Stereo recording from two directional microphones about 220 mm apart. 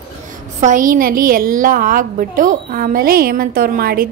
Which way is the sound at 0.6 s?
35° right (ahead or behind).